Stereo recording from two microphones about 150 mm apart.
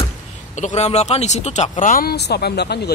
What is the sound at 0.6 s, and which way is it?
Speech, 50° left (ahead or behind).